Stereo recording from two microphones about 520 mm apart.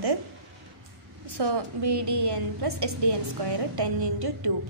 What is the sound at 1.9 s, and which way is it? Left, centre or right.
A woman's voice, right.